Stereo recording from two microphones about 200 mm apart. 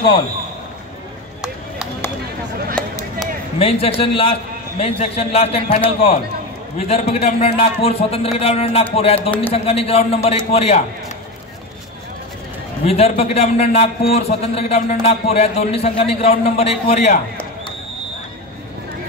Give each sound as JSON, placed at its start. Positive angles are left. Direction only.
{"t": 3.5, "sound": "a man's voice", "side_deg": 30}
{"t": 12.8, "sound": "a man's voice", "side_deg": 30}